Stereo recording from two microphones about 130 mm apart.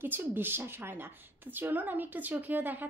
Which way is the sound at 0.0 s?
15° right (ahead or behind).